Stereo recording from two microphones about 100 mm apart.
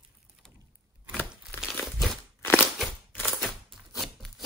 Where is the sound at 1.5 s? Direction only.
20° left (ahead or behind).